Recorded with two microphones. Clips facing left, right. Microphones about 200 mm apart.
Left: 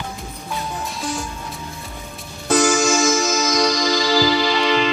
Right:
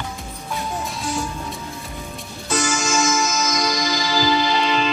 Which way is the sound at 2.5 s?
55° left (ahead or behind).